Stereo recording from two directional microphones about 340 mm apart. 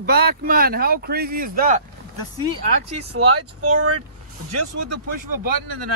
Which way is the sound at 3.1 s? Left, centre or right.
Right.